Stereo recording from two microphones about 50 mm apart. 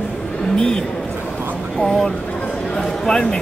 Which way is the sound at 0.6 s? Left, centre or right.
Centre.